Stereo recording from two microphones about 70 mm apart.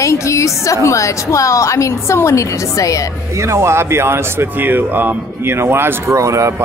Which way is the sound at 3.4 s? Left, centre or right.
Right.